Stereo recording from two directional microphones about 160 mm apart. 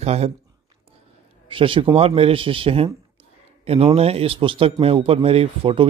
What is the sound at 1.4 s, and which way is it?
Speech, 35° right (ahead or behind).